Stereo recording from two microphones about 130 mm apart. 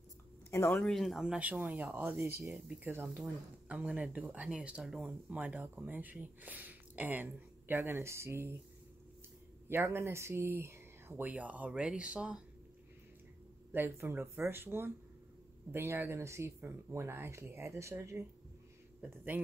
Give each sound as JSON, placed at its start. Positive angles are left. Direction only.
{"t": 0.5, "sound": "speech", "side_deg": 20}
{"t": 0.7, "sound": "speech", "side_deg": 5}
{"t": 9.7, "sound": "speech", "side_deg": -20}
{"t": 13.7, "sound": "speech", "side_deg": -15}